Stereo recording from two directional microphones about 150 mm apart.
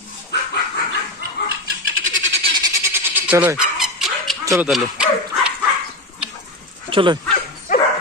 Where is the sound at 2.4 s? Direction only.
30° right (ahead or behind).